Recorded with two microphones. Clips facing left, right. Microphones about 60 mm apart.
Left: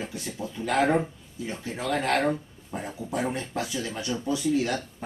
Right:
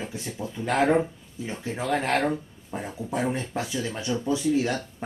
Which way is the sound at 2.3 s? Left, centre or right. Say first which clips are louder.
Right 2 dB; centre.